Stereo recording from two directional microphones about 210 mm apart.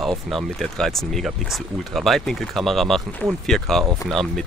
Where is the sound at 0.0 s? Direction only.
Centre (ahead or behind).